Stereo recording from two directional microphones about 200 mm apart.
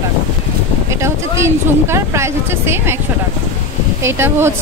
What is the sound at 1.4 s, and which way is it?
Speech, 15° right (ahead or behind).